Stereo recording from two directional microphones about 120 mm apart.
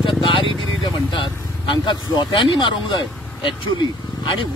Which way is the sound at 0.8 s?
45° left (ahead or behind).